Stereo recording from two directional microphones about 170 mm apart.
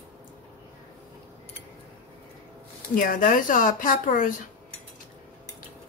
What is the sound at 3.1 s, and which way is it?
Speech, 50° left (ahead or behind).